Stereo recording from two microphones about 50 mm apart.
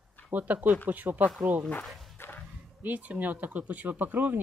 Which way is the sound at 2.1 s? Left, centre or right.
Left.